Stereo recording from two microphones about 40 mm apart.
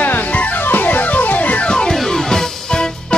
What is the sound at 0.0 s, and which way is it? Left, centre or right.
Music, left.